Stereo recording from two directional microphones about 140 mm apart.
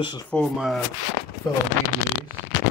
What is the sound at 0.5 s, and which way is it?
Speech, 5° right (ahead or behind).